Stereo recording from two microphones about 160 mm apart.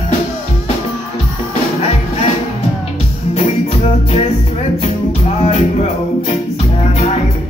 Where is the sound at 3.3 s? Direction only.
45° left (ahead or behind).